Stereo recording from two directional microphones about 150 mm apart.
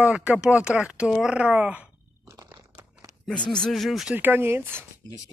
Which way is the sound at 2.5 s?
30° right (ahead or behind).